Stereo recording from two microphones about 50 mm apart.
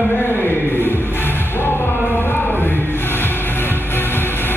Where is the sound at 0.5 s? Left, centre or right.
Left.